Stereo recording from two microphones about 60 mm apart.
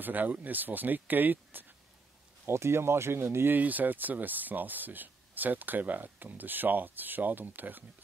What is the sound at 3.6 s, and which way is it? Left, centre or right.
Speech, right.